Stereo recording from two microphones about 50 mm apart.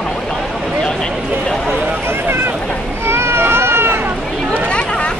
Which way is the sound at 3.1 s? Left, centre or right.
Right.